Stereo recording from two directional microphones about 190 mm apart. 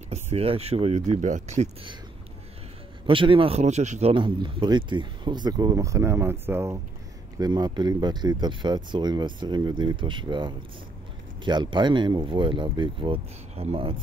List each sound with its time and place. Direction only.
0.1 s speech: 35° right (ahead or behind)
3.1 s speech: 25° right (ahead or behind)
4.1 s speech: 25° right (ahead or behind)